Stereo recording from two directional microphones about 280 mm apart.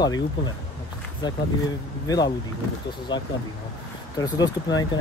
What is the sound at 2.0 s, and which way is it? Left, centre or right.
Speech, centre.